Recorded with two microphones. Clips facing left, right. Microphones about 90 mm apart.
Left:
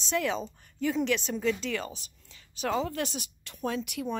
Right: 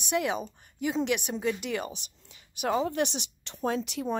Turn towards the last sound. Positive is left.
turn(degrees=-30)  # may be behind; listen again after turning